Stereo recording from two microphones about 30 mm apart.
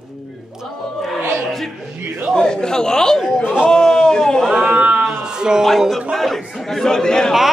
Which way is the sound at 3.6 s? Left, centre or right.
Left.